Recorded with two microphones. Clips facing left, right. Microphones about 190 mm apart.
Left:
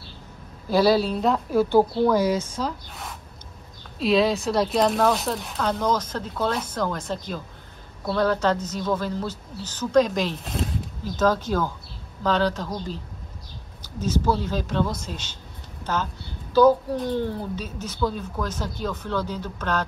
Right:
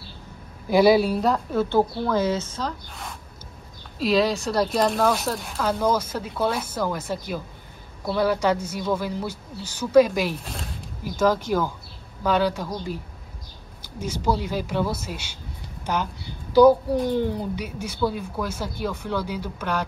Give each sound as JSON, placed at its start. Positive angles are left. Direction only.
{"t": 0.7, "sound": "speech", "side_deg": -15}
{"t": 1.2, "sound": "a woman's voice", "side_deg": 0}
{"t": 1.6, "sound": "a woman's voice", "side_deg": 15}
{"t": 11.1, "sound": "speech", "side_deg": -10}